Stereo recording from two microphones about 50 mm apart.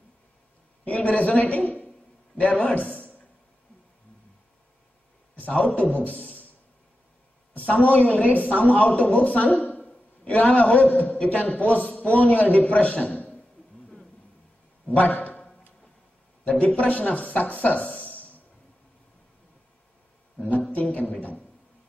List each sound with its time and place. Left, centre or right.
0.8 s a man's voice: left
5.3 s a man's voice: left
7.5 s a woman's voice: left
15.0 s a man's voice: left
16.4 s a woman's voice: left
20.7 s speech: left